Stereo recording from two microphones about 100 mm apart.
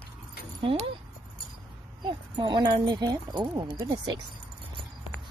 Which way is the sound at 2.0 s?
50° right (ahead or behind).